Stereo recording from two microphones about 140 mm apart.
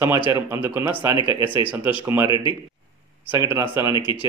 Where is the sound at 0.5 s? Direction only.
15° right (ahead or behind).